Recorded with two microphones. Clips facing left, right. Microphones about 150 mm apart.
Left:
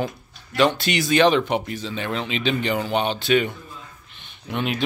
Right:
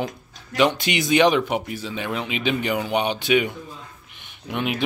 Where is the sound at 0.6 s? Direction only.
15° right (ahead or behind).